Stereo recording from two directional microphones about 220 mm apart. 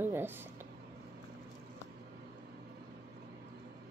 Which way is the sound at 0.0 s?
10° right (ahead or behind).